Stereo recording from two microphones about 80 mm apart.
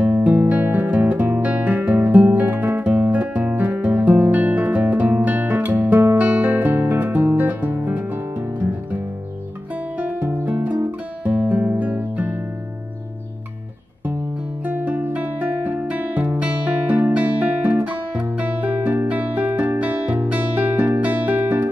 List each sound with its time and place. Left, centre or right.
0.2 s music: centre
9.9 s music: right
14.6 s music: right